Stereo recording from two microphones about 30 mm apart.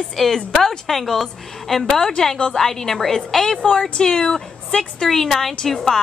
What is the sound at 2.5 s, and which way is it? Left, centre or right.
A woman's voice, centre.